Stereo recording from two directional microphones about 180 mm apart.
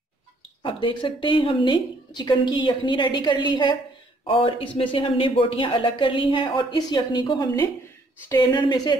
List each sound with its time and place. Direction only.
0.6 s speech: 30° left (ahead or behind)